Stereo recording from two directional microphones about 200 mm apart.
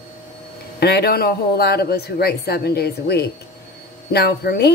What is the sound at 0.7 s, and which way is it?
A woman's voice, 55° left (ahead or behind).